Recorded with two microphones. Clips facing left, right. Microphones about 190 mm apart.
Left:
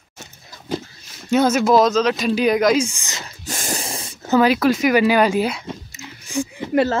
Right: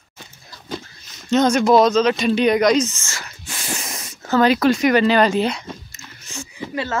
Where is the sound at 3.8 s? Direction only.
30° left (ahead or behind).